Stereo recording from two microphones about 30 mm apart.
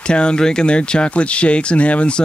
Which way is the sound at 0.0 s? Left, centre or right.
Left.